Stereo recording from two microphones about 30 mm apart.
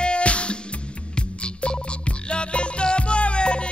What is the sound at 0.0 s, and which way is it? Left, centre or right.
Music, left.